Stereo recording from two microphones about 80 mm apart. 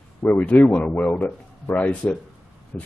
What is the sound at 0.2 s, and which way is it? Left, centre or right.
Speech, left.